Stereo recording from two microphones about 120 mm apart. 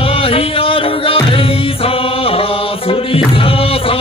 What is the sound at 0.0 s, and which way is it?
Music, 50° left (ahead or behind).